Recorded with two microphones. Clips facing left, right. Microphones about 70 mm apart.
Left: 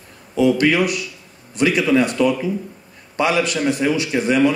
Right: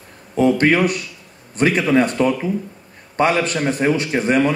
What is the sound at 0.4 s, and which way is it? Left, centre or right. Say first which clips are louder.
A man's voice: right 1 dB; right.